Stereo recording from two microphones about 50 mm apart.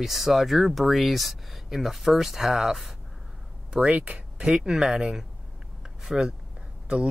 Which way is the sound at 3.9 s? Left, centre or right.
Right.